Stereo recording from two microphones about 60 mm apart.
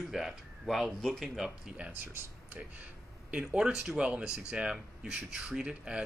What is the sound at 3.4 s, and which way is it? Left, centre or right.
Speech, centre.